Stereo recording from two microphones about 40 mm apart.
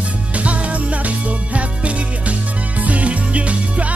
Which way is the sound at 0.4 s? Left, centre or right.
Right.